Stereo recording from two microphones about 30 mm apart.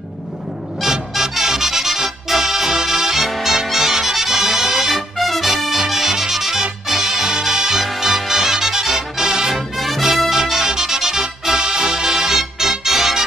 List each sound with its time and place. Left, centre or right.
1.1 s music: centre
5.2 s brass instrument: centre
6.9 s music: centre
9.8 s music: centre
10.3 s music: centre